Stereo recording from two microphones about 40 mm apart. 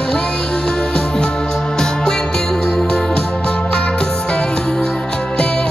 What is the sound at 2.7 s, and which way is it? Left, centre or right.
Music, left.